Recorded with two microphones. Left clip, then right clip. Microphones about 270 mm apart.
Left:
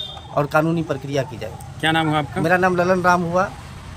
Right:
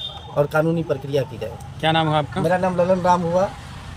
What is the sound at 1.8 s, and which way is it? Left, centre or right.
Speech, right.